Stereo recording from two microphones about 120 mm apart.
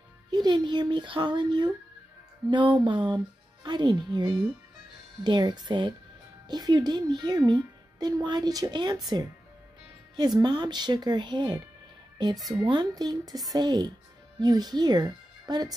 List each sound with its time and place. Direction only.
0.3 s a woman's voice: 35° right (ahead or behind)
2.8 s a woman's voice: 40° right (ahead or behind)